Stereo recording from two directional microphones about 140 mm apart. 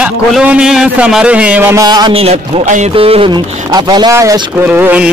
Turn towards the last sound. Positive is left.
turn(degrees=-10)  # may be behind; listen again after turning